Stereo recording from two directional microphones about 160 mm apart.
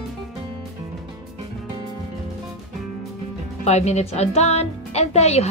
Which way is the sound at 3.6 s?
45° left (ahead or behind).